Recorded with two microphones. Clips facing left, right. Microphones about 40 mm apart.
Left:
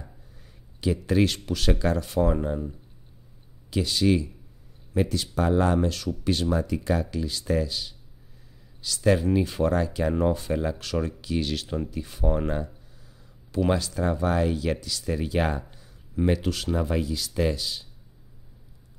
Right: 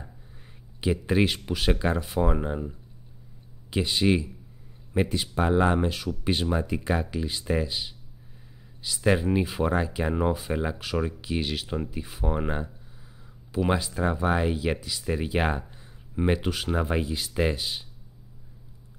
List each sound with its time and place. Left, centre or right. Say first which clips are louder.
0.4 s speech: left 1 dB; right
3.7 s speech: left 1 dB; right